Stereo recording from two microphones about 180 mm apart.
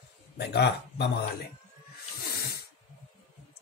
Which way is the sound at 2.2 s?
55° left (ahead or behind).